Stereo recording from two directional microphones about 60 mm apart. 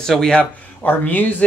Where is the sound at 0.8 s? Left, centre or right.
Left.